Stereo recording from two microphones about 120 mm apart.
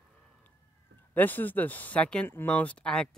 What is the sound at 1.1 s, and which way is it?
Speech, 15° left (ahead or behind).